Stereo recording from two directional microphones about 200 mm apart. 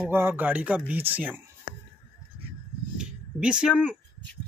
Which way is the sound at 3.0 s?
5° right (ahead or behind).